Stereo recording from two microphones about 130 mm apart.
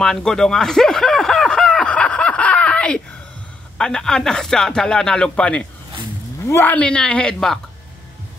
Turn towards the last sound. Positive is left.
turn(degrees=5)  # may be behind; listen again after turning